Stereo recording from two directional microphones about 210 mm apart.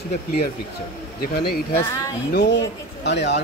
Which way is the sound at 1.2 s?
50° left (ahead or behind).